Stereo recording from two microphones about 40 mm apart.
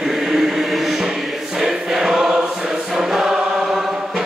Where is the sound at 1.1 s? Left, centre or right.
Centre.